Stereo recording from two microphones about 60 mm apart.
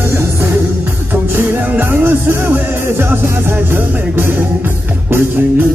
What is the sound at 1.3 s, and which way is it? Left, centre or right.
Music, right.